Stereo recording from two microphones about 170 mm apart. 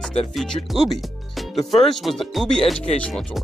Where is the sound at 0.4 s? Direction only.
Centre (ahead or behind).